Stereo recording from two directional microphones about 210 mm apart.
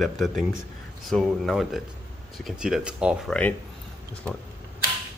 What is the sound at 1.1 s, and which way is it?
Speech, centre (ahead or behind).